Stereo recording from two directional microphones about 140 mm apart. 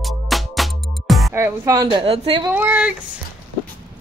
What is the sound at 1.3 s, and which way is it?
A woman's voice, 20° right (ahead or behind).